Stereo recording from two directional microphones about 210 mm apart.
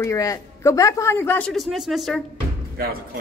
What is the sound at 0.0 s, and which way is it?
A woman's voice, 15° left (ahead or behind).